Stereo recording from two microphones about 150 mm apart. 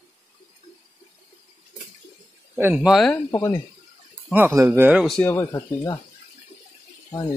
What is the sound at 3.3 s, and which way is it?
Speech, 15° left (ahead or behind).